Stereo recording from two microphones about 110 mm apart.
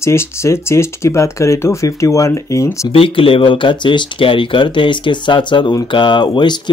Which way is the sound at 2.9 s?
55° left (ahead or behind).